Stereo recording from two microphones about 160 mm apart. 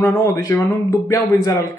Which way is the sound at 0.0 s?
20° left (ahead or behind).